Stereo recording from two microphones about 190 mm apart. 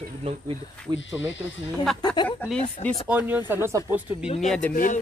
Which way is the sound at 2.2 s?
10° left (ahead or behind).